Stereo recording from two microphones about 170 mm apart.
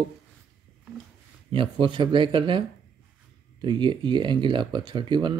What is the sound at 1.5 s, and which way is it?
Speech, 30° right (ahead or behind).